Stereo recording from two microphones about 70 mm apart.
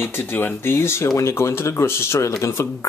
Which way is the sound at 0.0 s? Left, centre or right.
Left.